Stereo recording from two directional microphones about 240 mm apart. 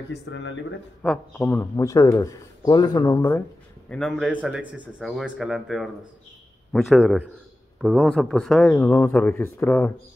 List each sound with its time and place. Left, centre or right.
0.1 s speech: left
1.0 s speech: centre